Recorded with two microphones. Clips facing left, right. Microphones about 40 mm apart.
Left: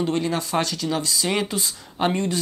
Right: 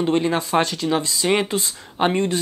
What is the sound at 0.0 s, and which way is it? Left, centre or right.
Speech, right.